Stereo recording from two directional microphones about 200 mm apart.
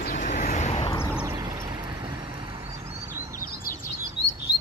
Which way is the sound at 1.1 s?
15° right (ahead or behind).